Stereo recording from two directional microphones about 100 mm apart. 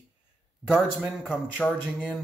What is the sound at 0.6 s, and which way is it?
Speech, 10° right (ahead or behind).